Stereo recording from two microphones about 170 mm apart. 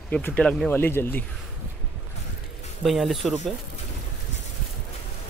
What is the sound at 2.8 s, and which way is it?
Speech, centre (ahead or behind).